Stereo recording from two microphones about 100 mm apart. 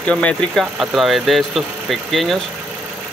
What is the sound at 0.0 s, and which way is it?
Speech, 10° left (ahead or behind).